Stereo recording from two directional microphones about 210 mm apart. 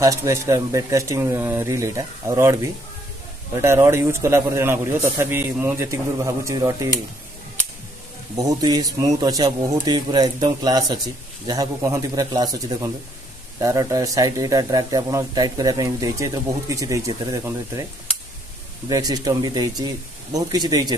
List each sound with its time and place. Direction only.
0.0 s speech: 15° right (ahead or behind)
8.4 s speech: 15° right (ahead or behind)
18.9 s speech: 15° right (ahead or behind)